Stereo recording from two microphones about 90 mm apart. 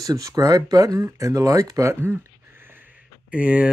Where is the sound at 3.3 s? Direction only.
15° right (ahead or behind).